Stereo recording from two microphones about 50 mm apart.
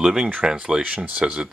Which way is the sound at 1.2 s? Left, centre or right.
Centre.